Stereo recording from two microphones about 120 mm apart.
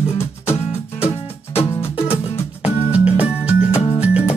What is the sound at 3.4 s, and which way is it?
Music, 10° right (ahead or behind).